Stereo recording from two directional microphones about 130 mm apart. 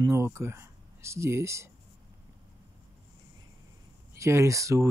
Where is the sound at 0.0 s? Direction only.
20° right (ahead or behind).